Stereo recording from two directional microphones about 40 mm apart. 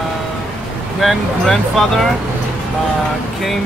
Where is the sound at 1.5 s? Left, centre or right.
Centre.